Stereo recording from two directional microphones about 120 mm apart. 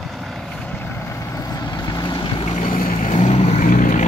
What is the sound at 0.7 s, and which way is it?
Vehicle, 20° left (ahead or behind).